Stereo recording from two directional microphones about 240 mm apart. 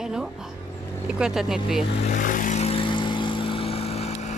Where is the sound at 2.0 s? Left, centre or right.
Left.